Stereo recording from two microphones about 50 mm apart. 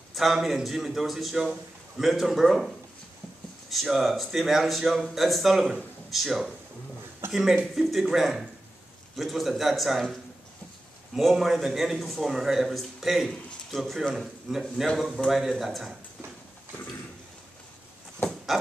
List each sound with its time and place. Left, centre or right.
0.1 s a man's voice: centre
3.7 s speech: centre
7.7 s speech: centre
11.1 s a man's voice: centre
18.2 s a sound: left